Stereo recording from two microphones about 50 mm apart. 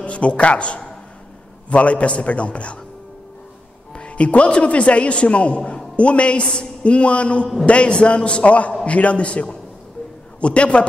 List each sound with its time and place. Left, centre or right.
0.0 s a man's voice: left
3.9 s a man's voice: left